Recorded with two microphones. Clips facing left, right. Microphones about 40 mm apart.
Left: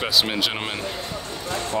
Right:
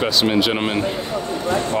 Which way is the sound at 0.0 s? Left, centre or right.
Centre.